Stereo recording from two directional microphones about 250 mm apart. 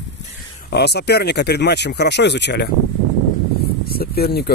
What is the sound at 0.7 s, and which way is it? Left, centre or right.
Speech, left.